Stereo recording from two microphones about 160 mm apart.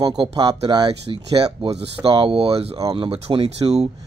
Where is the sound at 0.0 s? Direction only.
25° right (ahead or behind).